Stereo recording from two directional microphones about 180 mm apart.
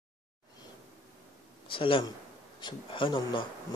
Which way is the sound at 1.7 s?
30° left (ahead or behind).